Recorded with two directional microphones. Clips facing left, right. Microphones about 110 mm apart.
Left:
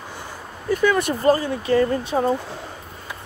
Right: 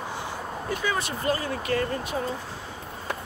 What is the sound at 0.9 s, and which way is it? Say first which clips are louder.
Speech: left 9 dB; 55° left (ahead or behind).